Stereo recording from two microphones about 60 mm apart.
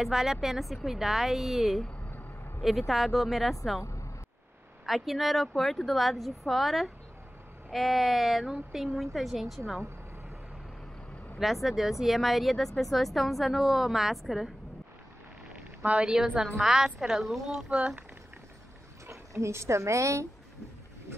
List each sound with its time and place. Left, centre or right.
0.0 s speech: centre
4.8 s speech: centre
11.3 s speech: centre
15.5 s a sound: right
16.3 s speech: centre
17.6 s speech: centre
19.0 s speech: right